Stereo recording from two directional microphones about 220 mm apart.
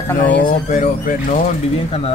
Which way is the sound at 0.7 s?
35° left (ahead or behind).